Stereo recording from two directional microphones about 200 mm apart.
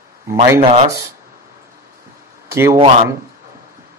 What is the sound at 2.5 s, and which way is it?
Speech, 15° right (ahead or behind).